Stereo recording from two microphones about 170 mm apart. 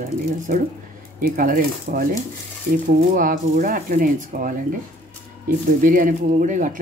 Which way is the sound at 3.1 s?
55° right (ahead or behind).